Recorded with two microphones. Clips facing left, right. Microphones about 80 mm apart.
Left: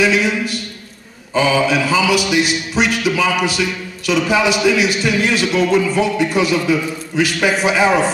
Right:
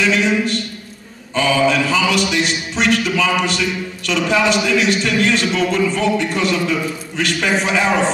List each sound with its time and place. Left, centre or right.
0.0 s a man's voice: centre
1.3 s mantra: centre